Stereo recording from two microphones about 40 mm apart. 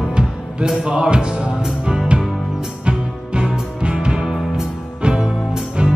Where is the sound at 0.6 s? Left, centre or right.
Centre.